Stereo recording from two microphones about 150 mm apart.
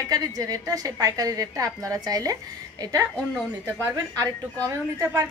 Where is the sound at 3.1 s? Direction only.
10° right (ahead or behind).